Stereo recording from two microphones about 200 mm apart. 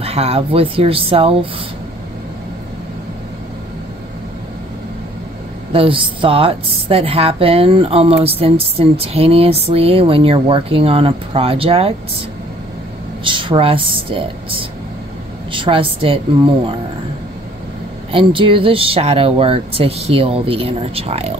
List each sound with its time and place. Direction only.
0.0 s a woman's voice: 30° right (ahead or behind)
5.7 s a woman's voice: 25° right (ahead or behind)
13.2 s a woman's voice: 25° right (ahead or behind)
18.1 s a woman's voice: 25° right (ahead or behind)